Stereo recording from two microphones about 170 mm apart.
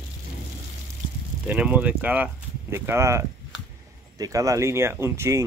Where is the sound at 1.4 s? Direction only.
5° right (ahead or behind).